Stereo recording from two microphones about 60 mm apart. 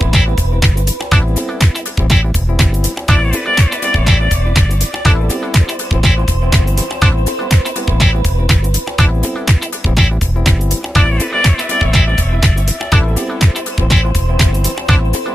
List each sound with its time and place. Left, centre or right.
1.1 s music: centre
11.0 s music: centre
12.9 s music: centre